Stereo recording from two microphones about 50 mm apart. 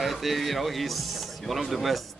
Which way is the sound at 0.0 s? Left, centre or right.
Centre.